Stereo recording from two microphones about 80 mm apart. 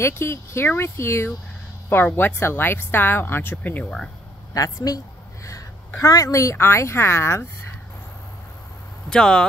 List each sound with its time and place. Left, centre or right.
0.0 s a woman's voice: left
4.6 s a woman's voice: left
9.1 s speech: centre